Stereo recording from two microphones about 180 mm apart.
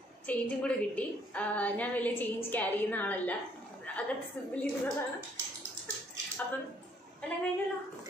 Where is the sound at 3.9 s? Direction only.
10° left (ahead or behind).